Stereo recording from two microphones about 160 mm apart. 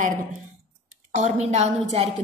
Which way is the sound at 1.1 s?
45° right (ahead or behind).